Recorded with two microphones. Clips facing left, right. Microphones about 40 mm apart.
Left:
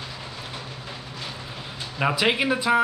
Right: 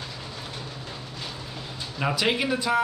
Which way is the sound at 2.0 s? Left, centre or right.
Centre.